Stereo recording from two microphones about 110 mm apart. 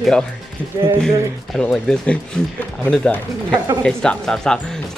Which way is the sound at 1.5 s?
5° left (ahead or behind).